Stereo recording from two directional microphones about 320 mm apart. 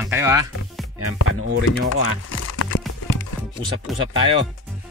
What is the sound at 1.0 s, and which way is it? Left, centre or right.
Speech, right.